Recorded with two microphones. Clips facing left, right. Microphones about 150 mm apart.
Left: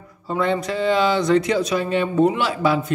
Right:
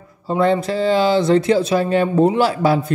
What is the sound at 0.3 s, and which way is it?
Speech, 30° right (ahead or behind).